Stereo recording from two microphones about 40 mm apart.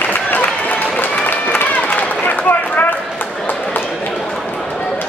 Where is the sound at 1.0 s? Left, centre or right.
Left.